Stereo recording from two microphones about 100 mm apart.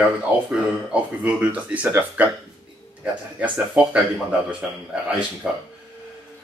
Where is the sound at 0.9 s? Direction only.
15° right (ahead or behind).